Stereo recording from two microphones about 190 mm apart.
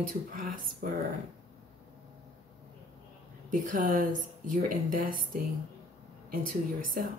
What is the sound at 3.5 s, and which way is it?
Speech, 45° right (ahead or behind).